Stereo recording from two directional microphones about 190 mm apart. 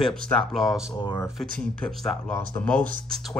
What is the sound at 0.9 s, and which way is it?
Speech, 20° left (ahead or behind).